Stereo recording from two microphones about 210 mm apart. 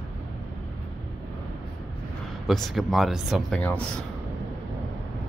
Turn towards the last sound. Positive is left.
turn(degrees=5)  # may be behind; listen again after turning